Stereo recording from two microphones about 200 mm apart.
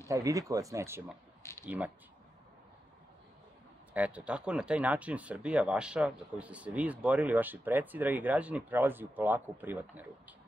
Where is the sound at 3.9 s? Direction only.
5° right (ahead or behind).